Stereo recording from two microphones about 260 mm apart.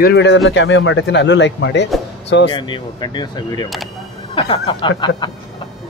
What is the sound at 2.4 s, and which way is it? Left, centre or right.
Speech, centre.